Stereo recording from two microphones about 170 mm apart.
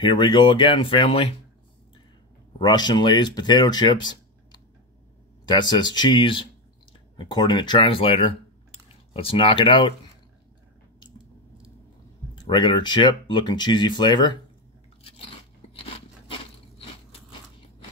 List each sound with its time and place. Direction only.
0.0 s speech: 30° left (ahead or behind)
2.6 s speech: 25° left (ahead or behind)
12.4 s speech: 30° left (ahead or behind)
15.7 s crunch: 35° left (ahead or behind)